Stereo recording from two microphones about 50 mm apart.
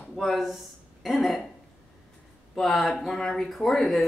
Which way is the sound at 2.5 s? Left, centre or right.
Centre.